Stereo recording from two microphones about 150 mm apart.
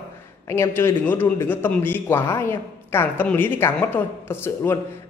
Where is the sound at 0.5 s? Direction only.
20° left (ahead or behind).